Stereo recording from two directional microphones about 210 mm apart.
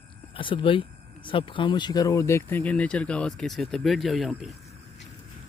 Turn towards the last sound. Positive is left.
turn(degrees=0)  # may be behind; listen again after turning